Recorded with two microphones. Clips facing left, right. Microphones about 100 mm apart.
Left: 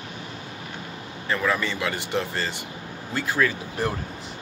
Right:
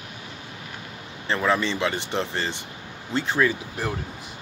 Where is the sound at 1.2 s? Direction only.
25° right (ahead or behind).